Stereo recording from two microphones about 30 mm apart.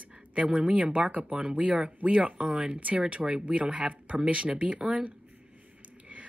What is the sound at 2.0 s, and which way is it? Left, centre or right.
Speech, right.